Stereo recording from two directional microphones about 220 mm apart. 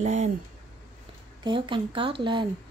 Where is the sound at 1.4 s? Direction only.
20° right (ahead or behind).